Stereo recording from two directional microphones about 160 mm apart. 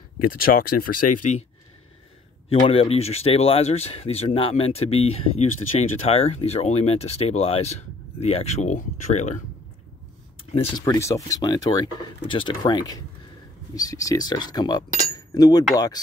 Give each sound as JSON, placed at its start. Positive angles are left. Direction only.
{"t": 0.5, "sound": "speech", "side_deg": 65}
{"t": 2.6, "sound": "speech", "side_deg": 35}
{"t": 10.5, "sound": "a sound", "side_deg": 50}
{"t": 10.8, "sound": "speech", "side_deg": 20}